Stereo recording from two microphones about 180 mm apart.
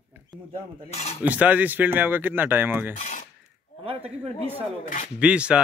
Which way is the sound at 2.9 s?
45° left (ahead or behind).